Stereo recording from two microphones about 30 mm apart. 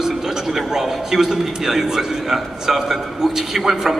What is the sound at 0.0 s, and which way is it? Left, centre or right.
A man's voice, centre.